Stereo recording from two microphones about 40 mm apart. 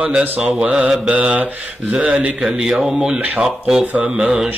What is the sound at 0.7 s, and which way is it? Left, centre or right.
Speech, right.